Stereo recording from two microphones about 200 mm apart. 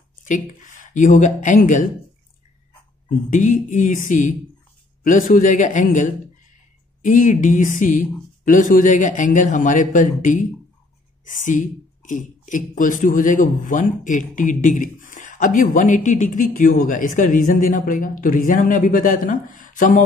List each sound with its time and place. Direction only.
0.2 s speech: 40° left (ahead or behind)
3.3 s speech: 40° left (ahead or behind)